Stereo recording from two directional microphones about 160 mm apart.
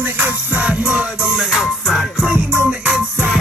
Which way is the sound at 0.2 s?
10° right (ahead or behind).